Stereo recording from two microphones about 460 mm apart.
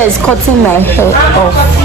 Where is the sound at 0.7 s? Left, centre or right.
Centre.